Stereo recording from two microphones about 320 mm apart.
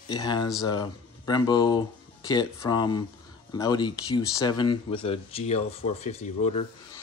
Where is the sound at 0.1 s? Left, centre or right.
Centre.